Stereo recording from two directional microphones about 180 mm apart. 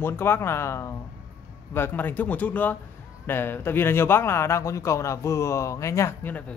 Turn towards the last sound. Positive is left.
turn(degrees=10)  # may be behind; listen again after turning